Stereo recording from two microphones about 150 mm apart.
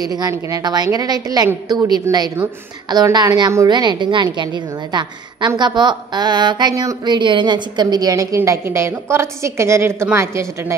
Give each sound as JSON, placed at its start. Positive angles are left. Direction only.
{"t": 0.0, "sound": "speech", "side_deg": -25}